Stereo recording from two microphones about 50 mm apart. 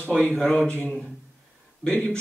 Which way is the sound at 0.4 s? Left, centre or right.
Centre.